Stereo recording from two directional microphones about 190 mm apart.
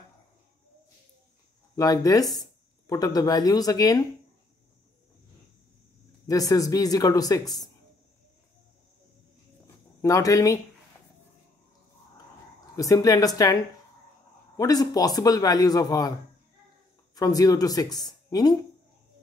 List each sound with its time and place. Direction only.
1.8 s speech: 20° left (ahead or behind)
6.2 s speech: 20° left (ahead or behind)
10.0 s speech: 15° left (ahead or behind)
12.7 s speech: 20° left (ahead or behind)
14.6 s speech: 20° left (ahead or behind)
17.1 s speech: 20° left (ahead or behind)